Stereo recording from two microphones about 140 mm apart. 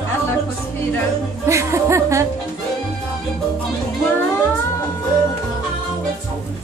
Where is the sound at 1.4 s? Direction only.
20° right (ahead or behind).